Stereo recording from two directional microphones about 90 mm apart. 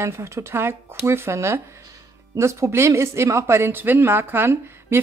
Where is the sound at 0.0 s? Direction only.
30° right (ahead or behind).